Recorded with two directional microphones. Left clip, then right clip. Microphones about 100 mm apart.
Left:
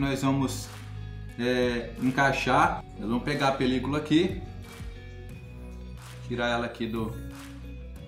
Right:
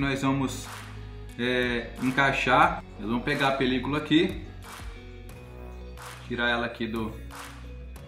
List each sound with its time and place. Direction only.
0.0 s speech: 25° left (ahead or behind)
6.3 s speech: 25° left (ahead or behind)